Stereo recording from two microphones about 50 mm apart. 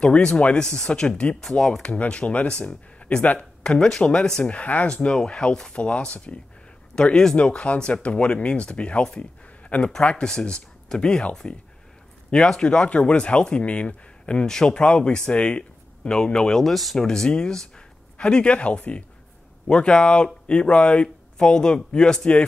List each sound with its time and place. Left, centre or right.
0.0 s speech: left
0.7 s speech: centre
1.0 s speech: left
1.4 s speech: centre
1.8 s speech: left
3.0 s a sound: left
3.3 s speech: centre
7.1 s speech: centre
9.2 s a sound: left
10.0 s speech: centre
12.3 s speech: left
16.5 s speech: centre
17.0 s speech: centre